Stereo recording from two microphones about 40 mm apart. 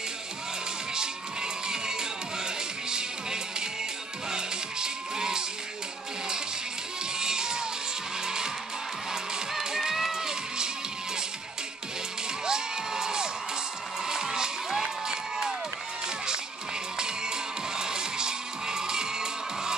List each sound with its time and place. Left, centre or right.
0.9 s crowd: centre
4.3 s music: centre
7.2 s crowd: centre
9.1 s music: centre
12.4 s crowd: centre
17.0 s music: centre